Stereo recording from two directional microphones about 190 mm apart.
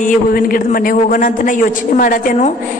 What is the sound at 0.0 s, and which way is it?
A man's voice, 45° left (ahead or behind).